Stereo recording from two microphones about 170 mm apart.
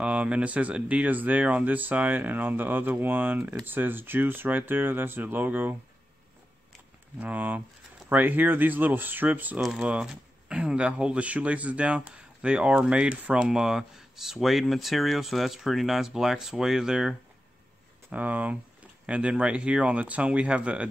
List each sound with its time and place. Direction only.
0.0 s speech: 5° right (ahead or behind)
7.2 s speech: 10° right (ahead or behind)
18.1 s speech: 10° right (ahead or behind)